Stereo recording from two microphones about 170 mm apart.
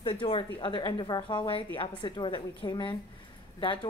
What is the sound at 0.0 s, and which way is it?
A woman's voice, 35° left (ahead or behind).